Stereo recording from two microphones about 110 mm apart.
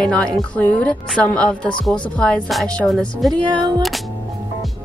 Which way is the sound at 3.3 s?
40° right (ahead or behind).